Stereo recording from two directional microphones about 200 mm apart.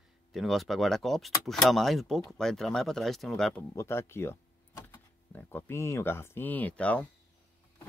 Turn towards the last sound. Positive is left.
turn(degrees=5)  # may be behind; listen again after turning